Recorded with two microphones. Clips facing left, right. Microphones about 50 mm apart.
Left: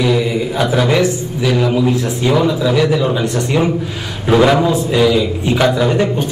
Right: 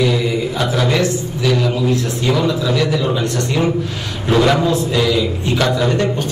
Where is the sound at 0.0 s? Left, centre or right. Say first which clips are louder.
Left 2 dB; centre.